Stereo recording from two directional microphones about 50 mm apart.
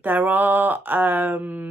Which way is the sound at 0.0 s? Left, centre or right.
Right.